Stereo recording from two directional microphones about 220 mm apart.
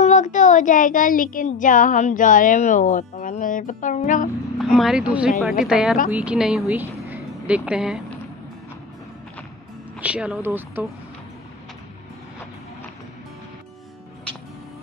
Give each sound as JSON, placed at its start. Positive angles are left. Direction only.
{"t": 0.0, "sound": "speech", "side_deg": 35}
{"t": 4.6, "sound": "speech", "side_deg": 0}
{"t": 9.9, "sound": "speech", "side_deg": -5}